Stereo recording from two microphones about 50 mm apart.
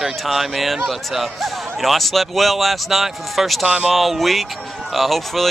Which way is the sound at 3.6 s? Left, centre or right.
Right.